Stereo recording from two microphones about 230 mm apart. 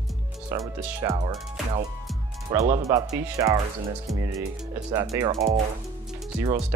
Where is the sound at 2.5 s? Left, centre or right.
Centre.